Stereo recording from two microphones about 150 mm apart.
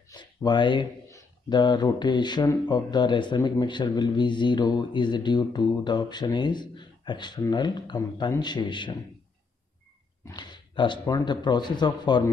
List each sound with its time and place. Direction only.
0.1 s speech: 30° left (ahead or behind)
10.3 s speech: 30° left (ahead or behind)